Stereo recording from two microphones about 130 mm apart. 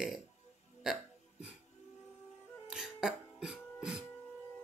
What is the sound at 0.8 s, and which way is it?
Burping, 5° right (ahead or behind).